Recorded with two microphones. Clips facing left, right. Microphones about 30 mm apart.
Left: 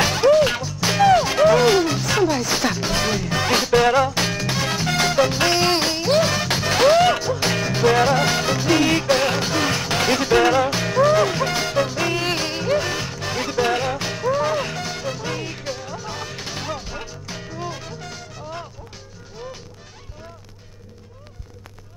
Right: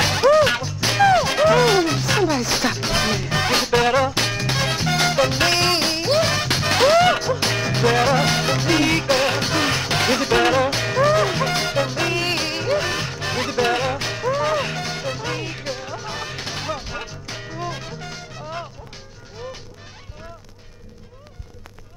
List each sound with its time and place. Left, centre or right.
0.0 s music: centre
3.7 s music: right
4.2 s music: centre
11.0 s music: right
11.2 s music: centre